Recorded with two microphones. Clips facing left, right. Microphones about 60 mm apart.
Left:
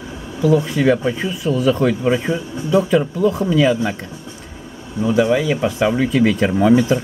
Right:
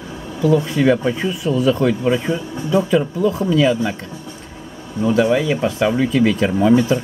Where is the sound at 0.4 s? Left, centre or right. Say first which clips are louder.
Even; centre.